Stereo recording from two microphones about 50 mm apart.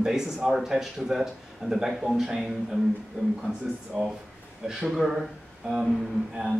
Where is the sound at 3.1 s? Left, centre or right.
Right.